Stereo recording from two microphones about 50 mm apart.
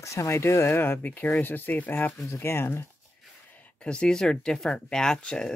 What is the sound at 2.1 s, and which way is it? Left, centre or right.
Speech, left.